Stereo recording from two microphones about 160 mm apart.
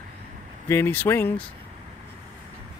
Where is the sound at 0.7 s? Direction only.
15° left (ahead or behind).